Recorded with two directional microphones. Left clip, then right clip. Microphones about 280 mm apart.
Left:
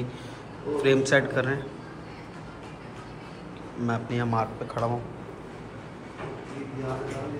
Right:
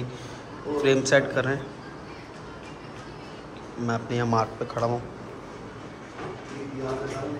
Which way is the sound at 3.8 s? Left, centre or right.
Centre.